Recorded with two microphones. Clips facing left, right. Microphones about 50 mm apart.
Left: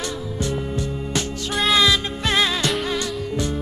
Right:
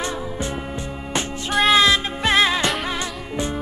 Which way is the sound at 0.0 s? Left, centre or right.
Right.